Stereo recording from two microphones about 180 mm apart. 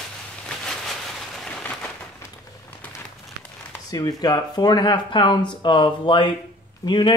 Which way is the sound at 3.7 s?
20° left (ahead or behind).